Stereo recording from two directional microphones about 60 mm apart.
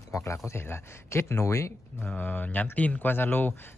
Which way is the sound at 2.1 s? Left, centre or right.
Left.